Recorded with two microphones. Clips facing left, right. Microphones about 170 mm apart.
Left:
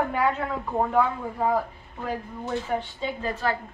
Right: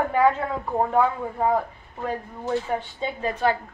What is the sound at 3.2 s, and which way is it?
Speech, 20° right (ahead or behind).